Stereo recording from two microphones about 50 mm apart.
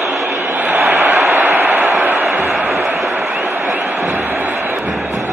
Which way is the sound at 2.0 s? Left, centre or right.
Right.